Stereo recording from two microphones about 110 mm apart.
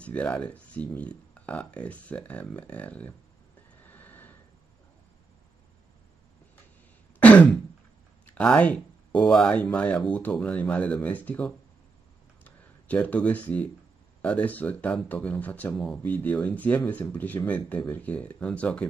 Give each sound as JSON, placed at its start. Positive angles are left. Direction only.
{"t": 0.0, "sound": "speech", "side_deg": 10}
{"t": 3.9, "sound": "a sound", "side_deg": 15}
{"t": 7.2, "sound": "throat clearing", "side_deg": 10}
{"t": 8.3, "sound": "speech", "side_deg": 10}